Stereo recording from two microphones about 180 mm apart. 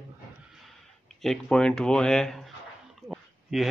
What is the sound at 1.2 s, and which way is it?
Speech, 5° left (ahead or behind).